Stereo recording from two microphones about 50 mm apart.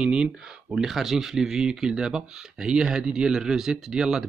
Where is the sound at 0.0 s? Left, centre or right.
Centre.